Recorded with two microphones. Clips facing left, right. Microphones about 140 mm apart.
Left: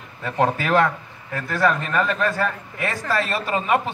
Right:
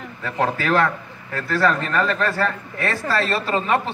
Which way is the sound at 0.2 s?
20° left (ahead or behind).